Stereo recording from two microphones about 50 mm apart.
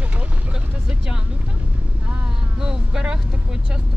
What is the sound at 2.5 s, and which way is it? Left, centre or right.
Speech, centre.